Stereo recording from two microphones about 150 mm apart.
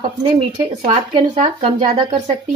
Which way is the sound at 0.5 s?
40° right (ahead or behind).